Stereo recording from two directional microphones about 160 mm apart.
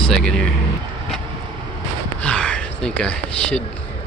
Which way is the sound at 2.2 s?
5° left (ahead or behind).